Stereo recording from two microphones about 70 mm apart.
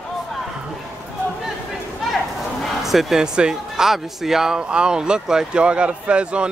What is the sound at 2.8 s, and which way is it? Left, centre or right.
Speech, centre.